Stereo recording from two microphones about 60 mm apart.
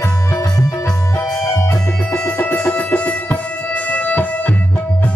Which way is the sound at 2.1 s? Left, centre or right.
Left.